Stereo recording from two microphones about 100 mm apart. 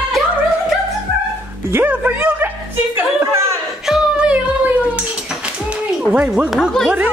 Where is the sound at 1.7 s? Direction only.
20° right (ahead or behind).